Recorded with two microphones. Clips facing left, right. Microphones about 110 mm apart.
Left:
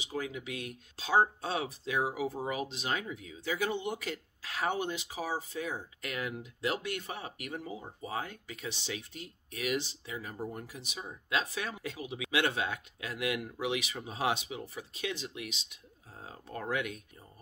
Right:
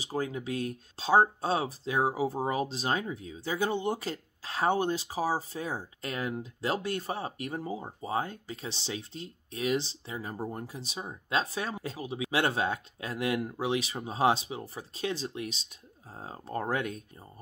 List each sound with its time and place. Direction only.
0.0 s speech: 35° right (ahead or behind)